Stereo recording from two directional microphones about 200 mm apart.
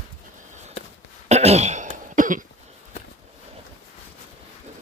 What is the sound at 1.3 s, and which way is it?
Throat clearing, 30° right (ahead or behind).